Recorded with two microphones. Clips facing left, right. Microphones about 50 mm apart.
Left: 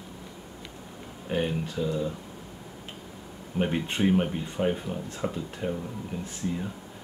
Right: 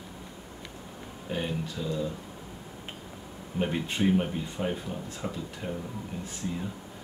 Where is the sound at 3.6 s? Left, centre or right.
Centre.